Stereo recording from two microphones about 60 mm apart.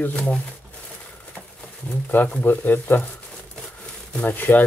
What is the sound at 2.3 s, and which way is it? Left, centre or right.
Speech, left.